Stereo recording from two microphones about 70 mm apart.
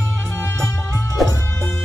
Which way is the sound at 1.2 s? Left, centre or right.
Centre.